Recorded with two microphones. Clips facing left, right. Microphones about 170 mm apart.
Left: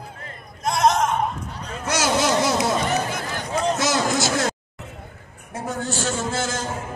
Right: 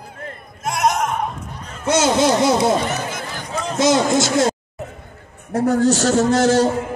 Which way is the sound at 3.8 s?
20° right (ahead or behind).